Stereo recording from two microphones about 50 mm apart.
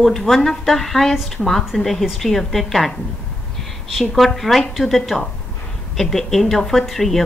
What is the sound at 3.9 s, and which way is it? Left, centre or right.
A woman's voice, centre.